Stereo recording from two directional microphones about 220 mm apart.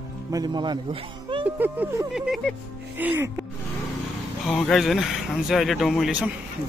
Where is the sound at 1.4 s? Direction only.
10° right (ahead or behind).